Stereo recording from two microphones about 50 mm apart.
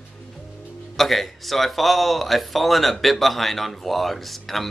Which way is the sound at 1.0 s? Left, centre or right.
Centre.